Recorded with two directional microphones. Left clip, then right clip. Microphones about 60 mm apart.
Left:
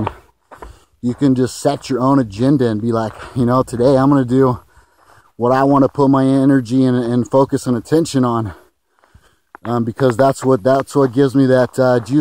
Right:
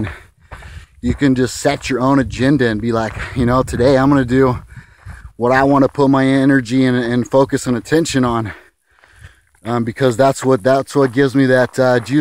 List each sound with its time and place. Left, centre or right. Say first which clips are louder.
0.7 s speech: right 1 dB; left
9.7 s speech: even; left